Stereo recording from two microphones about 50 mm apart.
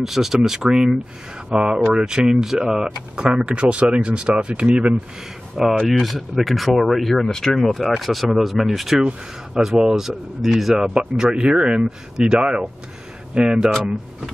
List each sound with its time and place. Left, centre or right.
0.0 s speech: centre
5.9 s speech: centre
10.9 s speech: centre